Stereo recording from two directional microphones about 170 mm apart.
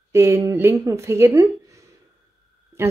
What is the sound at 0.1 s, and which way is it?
Speech, 15° right (ahead or behind).